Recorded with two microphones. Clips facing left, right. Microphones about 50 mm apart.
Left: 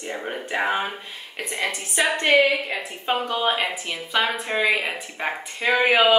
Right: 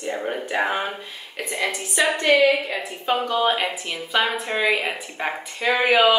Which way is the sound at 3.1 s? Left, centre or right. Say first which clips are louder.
Right 2 dB; centre.